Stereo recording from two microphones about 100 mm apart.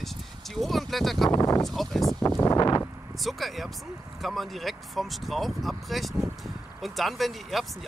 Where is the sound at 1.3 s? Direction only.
40° left (ahead or behind).